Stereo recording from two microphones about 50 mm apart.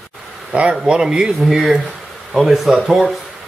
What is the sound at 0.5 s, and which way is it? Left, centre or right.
Speech, right.